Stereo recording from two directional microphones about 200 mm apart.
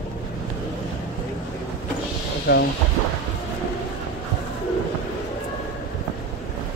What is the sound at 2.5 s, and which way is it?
Speech, 50° left (ahead or behind).